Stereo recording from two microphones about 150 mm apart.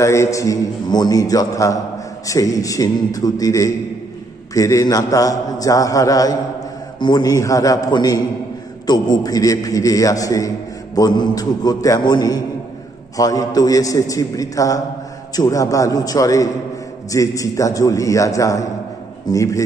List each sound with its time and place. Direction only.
0.0 s a man's voice: 20° left (ahead or behind)